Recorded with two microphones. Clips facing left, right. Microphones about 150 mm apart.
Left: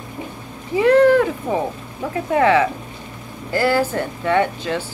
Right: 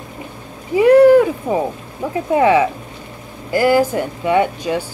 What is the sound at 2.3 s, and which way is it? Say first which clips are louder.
Speech: right 2 dB; 15° right (ahead or behind).